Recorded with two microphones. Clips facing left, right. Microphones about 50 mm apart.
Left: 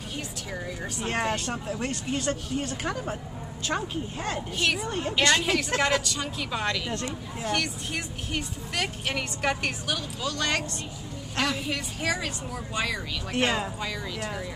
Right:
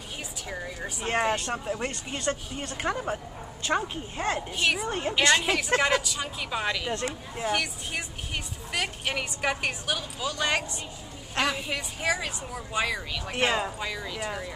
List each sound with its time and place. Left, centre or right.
0.5 s a woman's voice: centre
2.9 s a woman's voice: centre